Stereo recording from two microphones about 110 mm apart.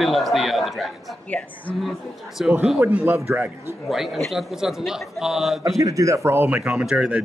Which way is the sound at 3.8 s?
Centre (ahead or behind).